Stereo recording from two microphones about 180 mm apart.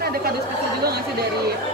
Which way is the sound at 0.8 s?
60° right (ahead or behind).